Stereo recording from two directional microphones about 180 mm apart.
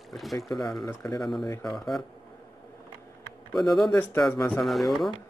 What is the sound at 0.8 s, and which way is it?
Speech, 20° left (ahead or behind).